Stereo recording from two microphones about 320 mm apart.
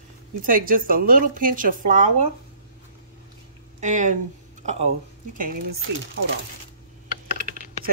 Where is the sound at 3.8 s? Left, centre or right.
Right.